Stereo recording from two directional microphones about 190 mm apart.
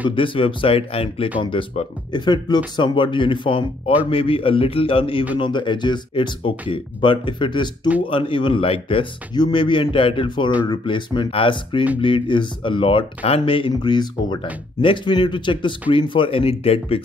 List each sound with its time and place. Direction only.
0.1 s speech: 25° left (ahead or behind)